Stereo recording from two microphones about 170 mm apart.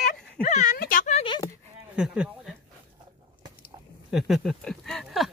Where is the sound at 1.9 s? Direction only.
5° right (ahead or behind).